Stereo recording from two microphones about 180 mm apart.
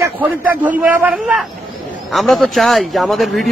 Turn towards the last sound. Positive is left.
turn(degrees=0)  # may be behind; listen again after turning